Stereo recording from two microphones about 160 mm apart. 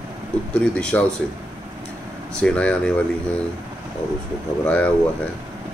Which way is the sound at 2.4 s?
5° left (ahead or behind).